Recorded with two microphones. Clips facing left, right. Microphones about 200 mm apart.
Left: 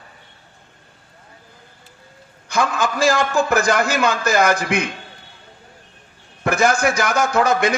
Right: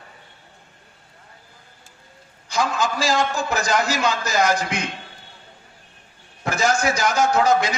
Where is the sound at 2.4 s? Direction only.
55° left (ahead or behind).